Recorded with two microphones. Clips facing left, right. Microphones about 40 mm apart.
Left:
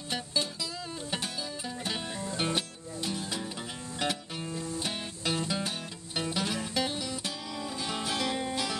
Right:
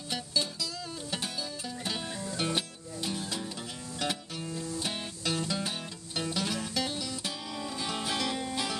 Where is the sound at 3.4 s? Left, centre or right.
Centre.